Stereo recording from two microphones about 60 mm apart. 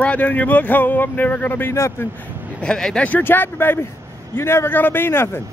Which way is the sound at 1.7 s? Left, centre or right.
Left.